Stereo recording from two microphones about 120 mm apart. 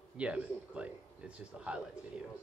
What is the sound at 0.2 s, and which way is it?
Speech, 10° right (ahead or behind).